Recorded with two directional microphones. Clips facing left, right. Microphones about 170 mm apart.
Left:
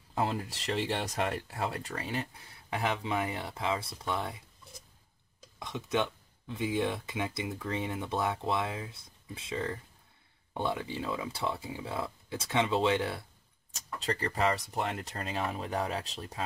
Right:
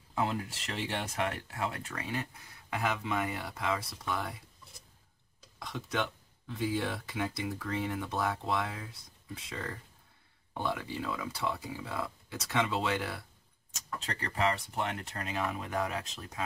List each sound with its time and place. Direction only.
0.1 s speech: 35° left (ahead or behind)
5.6 s speech: 20° left (ahead or behind)
13.7 s speech: 35° left (ahead or behind)